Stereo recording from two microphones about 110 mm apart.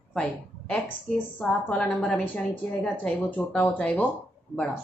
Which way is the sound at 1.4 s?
5° left (ahead or behind).